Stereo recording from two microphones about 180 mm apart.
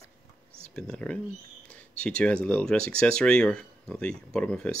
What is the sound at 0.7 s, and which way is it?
Speech, 5° left (ahead or behind).